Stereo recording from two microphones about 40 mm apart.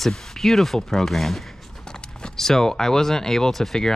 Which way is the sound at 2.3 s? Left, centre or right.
Centre.